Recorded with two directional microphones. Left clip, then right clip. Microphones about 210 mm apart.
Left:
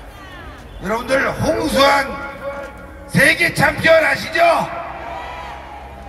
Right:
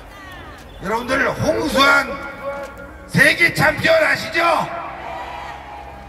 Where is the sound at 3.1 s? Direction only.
15° right (ahead or behind).